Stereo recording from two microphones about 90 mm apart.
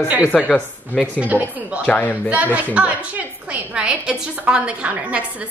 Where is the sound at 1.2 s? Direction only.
15° right (ahead or behind).